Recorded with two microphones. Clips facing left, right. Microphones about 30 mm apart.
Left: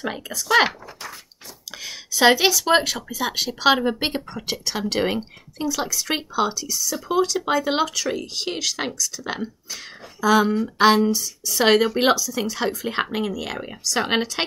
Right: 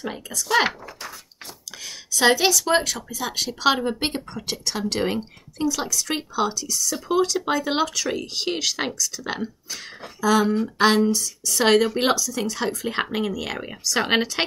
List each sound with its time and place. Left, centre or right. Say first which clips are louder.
0.0 s speech: left 2 dB; left
1.9 s speech: left 2 dB; centre